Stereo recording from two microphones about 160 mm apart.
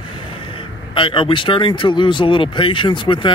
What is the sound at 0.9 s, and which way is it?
Speech, 30° left (ahead or behind).